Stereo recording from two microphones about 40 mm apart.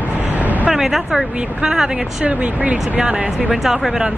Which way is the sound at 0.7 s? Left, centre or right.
Centre.